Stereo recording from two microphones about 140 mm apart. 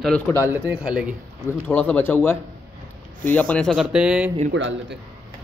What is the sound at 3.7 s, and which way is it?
Speech, 5° right (ahead or behind).